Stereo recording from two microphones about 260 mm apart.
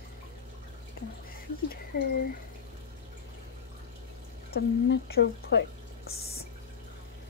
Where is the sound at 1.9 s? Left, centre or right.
Left.